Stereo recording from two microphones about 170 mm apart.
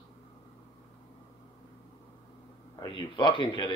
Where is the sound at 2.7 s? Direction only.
30° left (ahead or behind).